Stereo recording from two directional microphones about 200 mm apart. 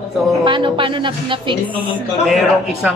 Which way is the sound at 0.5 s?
25° right (ahead or behind).